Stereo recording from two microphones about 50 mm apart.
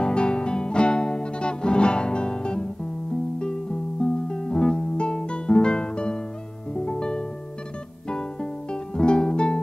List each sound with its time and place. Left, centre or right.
0.0 s music: centre
4.0 s music: centre